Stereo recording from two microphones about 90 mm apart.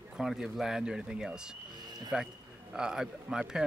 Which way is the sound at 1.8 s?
50° right (ahead or behind).